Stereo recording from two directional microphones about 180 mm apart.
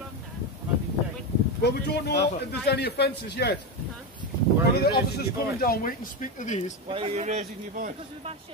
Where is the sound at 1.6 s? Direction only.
65° left (ahead or behind).